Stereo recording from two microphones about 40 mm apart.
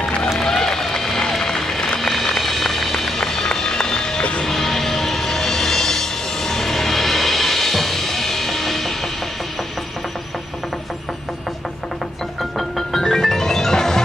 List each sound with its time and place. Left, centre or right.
0.4 s run: centre
4.2 s music: left
4.5 s music: centre
12.4 s music: centre